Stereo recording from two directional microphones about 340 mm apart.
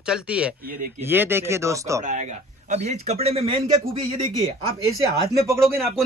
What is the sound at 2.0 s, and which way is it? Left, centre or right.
Speech, right.